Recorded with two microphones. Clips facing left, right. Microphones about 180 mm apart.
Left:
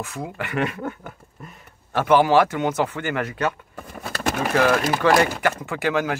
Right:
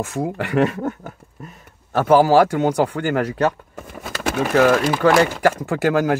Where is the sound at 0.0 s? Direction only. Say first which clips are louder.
Right 7 dB; 45° right (ahead or behind).